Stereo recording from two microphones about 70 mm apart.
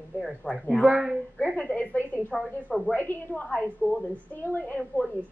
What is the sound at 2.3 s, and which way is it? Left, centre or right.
Speech, centre.